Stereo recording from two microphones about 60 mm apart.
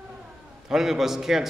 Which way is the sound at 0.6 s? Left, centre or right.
Centre.